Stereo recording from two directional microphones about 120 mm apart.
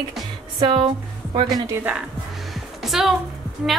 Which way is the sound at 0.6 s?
50° right (ahead or behind).